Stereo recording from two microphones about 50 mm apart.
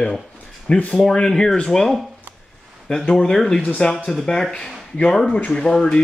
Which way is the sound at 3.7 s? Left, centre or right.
Centre.